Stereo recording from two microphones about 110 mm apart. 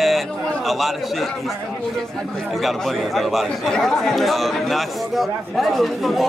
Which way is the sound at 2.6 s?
Centre (ahead or behind).